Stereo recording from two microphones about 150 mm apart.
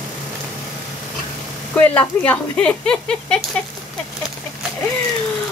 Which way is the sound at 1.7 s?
10° left (ahead or behind).